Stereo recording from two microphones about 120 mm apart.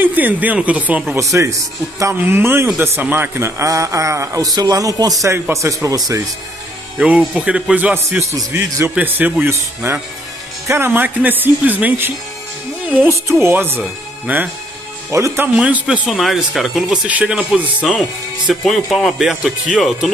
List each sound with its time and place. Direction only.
0.0 s speech: 15° right (ahead or behind)
1.1 s a man's voice: 25° right (ahead or behind)
7.0 s speech: 10° right (ahead or behind)
13.1 s speech: 20° right (ahead or behind)
16.1 s speech: centre (ahead or behind)